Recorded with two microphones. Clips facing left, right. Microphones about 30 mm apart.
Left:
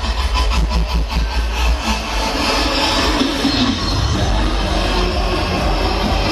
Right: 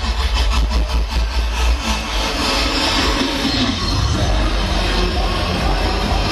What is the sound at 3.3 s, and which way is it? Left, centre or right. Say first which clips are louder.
Music: left 2 dB; centre.